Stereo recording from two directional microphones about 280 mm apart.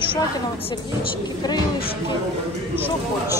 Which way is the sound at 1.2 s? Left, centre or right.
Centre.